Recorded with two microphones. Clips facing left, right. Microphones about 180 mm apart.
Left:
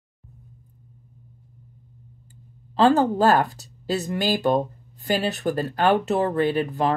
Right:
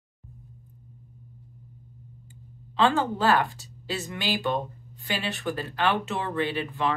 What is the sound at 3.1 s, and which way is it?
Speech, 40° left (ahead or behind).